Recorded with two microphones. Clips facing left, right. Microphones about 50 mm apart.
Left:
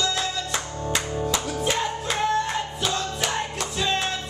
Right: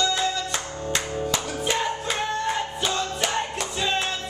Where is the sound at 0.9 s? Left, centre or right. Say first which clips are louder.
Left 1 dB; centre.